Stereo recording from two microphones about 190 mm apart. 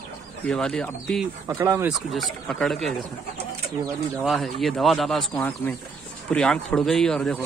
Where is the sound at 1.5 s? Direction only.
15° right (ahead or behind).